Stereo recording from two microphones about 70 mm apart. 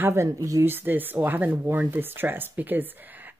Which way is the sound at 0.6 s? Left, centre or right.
Right.